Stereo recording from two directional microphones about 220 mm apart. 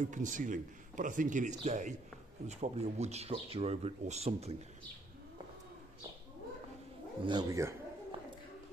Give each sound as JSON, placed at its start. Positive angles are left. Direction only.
{"t": 0.0, "sound": "a man's voice", "side_deg": -35}
{"t": 7.2, "sound": "speech", "side_deg": -15}